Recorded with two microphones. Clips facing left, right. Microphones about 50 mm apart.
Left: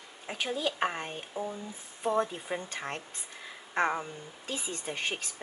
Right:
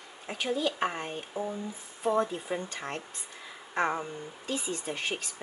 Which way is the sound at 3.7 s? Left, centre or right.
Centre.